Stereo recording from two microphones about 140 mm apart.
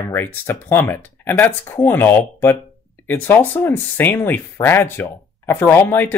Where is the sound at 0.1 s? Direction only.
15° left (ahead or behind).